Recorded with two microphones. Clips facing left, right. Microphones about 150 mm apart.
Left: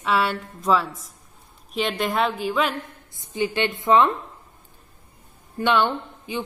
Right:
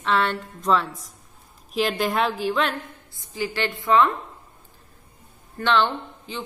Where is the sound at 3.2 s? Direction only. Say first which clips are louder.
Left 3 dB; 20° left (ahead or behind).